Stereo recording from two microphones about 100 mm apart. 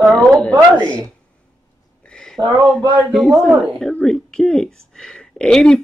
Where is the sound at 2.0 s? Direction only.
5° left (ahead or behind).